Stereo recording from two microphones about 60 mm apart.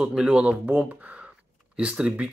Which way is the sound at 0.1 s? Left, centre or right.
Centre.